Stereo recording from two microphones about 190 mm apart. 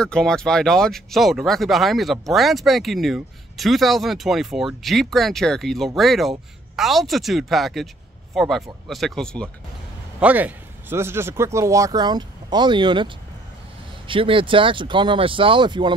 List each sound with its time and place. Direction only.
0.0 s speech: 5° left (ahead or behind)
10.2 s a man's voice: 10° right (ahead or behind); by 15.9 s 25° right (ahead or behind)